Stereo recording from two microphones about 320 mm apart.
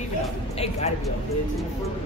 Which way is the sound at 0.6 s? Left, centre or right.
Centre.